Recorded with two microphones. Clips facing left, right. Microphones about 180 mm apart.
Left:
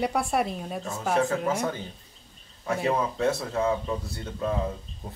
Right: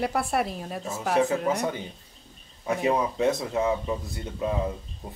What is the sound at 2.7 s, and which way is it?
A man's voice, 15° right (ahead or behind).